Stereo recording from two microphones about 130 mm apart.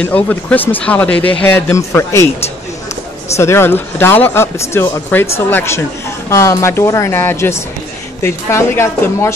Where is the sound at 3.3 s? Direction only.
20° left (ahead or behind).